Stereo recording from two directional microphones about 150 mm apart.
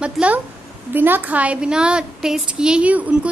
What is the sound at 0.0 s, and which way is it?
A woman's voice, 10° right (ahead or behind).